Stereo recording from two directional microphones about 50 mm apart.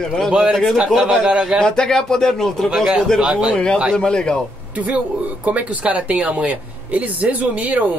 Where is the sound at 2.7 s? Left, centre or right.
Centre.